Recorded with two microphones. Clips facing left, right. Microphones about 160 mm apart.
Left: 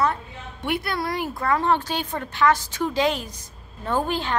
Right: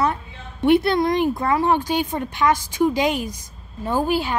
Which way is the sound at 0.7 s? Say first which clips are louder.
Right 10 dB; 25° right (ahead or behind).